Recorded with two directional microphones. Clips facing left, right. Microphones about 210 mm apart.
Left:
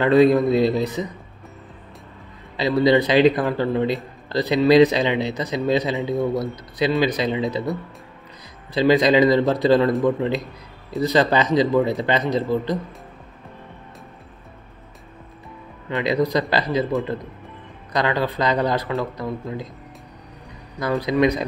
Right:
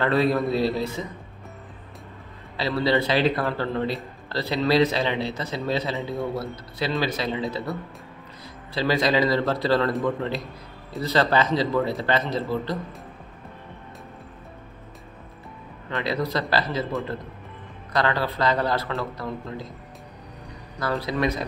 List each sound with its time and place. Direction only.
0.0 s speech: 15° left (ahead or behind)
2.5 s speech: 15° left (ahead or behind)
8.7 s a man's voice: 20° left (ahead or behind)
11.0 s speech: 15° left (ahead or behind)
15.9 s speech: 15° left (ahead or behind)
17.9 s speech: 15° left (ahead or behind)
20.8 s speech: 15° left (ahead or behind)